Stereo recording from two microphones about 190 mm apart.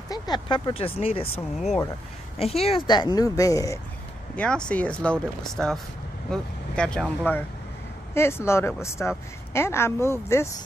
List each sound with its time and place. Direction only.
0.1 s speech: 25° left (ahead or behind)
2.3 s a woman's voice: 30° left (ahead or behind)
4.4 s speech: 5° left (ahead or behind)